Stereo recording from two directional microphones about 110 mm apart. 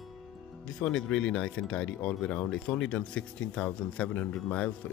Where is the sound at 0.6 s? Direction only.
5° left (ahead or behind).